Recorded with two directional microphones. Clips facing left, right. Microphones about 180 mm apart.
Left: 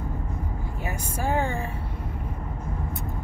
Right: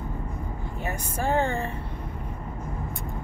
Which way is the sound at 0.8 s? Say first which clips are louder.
Right 1 dB; 10° left (ahead or behind).